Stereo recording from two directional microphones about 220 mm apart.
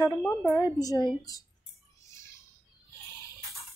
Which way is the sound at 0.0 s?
10° left (ahead or behind).